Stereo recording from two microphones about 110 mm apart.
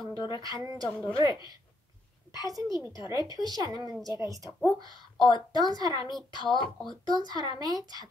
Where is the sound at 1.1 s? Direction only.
45° left (ahead or behind).